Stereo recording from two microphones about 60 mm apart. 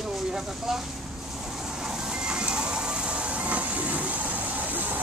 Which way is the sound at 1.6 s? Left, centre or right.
Centre.